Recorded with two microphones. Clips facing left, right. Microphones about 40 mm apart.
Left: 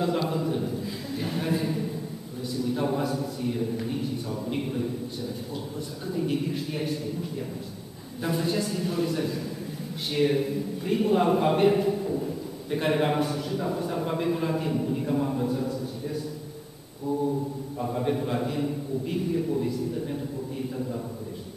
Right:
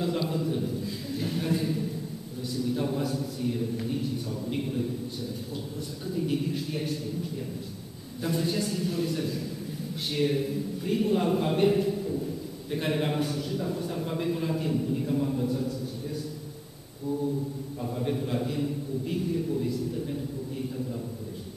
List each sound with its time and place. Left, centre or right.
0.2 s a sound: centre
2.5 s a man's voice: centre
6.0 s a man's voice: centre
8.2 s a man's voice: centre
12.1 s a sound: left
12.7 s a man's voice: centre
17.7 s a man's voice: left